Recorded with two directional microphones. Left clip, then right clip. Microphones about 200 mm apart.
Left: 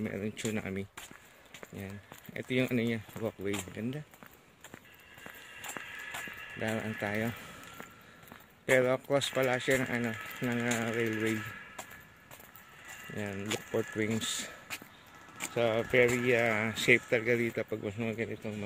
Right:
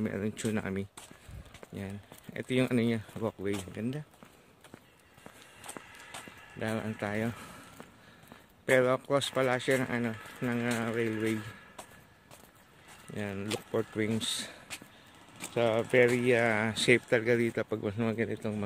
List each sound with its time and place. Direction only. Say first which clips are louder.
0.0 s speech: right 2 dB; 20° right (ahead or behind)
5.8 s music: left 6 dB; centre (ahead or behind)
6.6 s speech: even; 10° right (ahead or behind)
8.6 s speech: right 1 dB; 10° right (ahead or behind)
13.1 s speech: right 1 dB; 10° right (ahead or behind); by 18.6 s 30° right (ahead or behind)